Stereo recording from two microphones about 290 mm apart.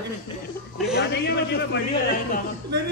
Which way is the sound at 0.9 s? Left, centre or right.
Left.